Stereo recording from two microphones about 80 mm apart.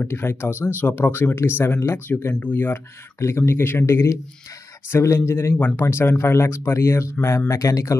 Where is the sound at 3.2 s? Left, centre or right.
Left.